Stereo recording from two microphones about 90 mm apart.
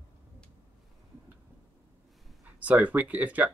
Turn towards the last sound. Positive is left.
turn(degrees=-15)  # may be behind; listen again after turning